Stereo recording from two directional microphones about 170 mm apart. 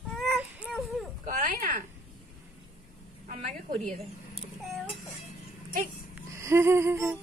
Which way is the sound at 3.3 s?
45° right (ahead or behind).